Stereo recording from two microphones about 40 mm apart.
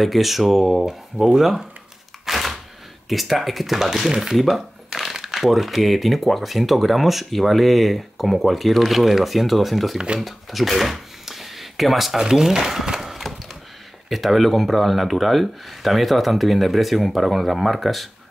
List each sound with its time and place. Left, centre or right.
0.0 s speech: centre
2.2 s a sound: centre
3.1 s speech: centre
9.9 s speech: right
10.2 s a sound: centre
14.0 s speech: centre